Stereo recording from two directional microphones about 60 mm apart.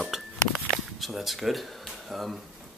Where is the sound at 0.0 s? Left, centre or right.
Centre.